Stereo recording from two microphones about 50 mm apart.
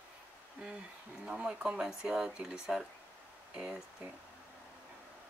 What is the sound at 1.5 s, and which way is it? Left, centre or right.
Speech, centre.